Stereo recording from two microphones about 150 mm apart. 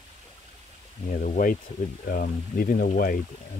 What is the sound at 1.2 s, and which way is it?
Speech, 65° left (ahead or behind).